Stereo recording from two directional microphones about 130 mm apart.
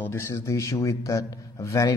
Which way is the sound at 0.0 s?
20° left (ahead or behind).